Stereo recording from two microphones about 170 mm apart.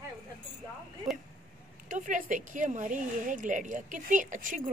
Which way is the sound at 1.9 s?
50° right (ahead or behind).